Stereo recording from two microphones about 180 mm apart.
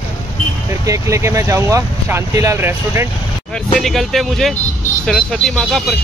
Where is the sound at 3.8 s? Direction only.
Centre (ahead or behind).